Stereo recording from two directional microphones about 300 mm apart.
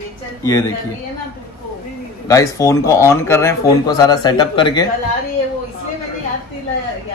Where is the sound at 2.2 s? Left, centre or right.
Centre.